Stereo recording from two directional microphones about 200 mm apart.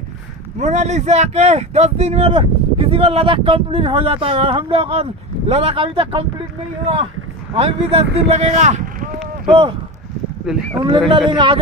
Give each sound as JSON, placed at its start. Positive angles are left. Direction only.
{"t": 0.6, "sound": "speech", "side_deg": -35}
{"t": 7.5, "sound": "speech", "side_deg": -30}
{"t": 9.5, "sound": "speech", "side_deg": -25}
{"t": 10.4, "sound": "speech", "side_deg": 0}
{"t": 11.3, "sound": "speech", "side_deg": -25}